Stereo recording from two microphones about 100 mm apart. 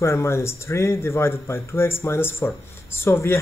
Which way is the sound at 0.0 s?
30° left (ahead or behind).